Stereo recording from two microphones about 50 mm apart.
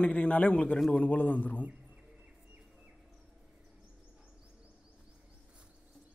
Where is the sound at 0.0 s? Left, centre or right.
Left.